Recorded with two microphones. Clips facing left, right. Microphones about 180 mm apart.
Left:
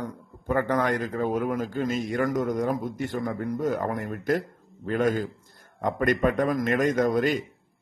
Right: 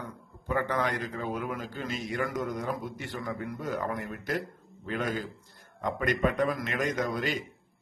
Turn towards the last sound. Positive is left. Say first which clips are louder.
# left 8 dB
turn(degrees=50)  # may be behind; listen again after turning